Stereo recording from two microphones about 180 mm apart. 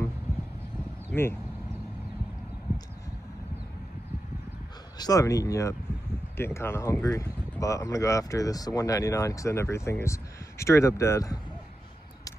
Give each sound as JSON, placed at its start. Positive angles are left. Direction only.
{"t": 4.9, "sound": "speech", "side_deg": 20}